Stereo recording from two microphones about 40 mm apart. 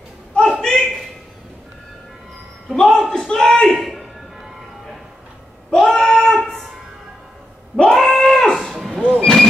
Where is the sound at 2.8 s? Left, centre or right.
Centre.